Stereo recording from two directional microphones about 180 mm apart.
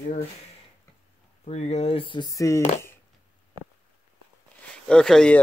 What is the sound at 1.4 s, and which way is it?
Speech, 40° left (ahead or behind).